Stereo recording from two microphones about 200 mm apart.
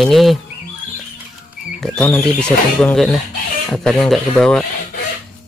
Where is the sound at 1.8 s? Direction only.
5° left (ahead or behind).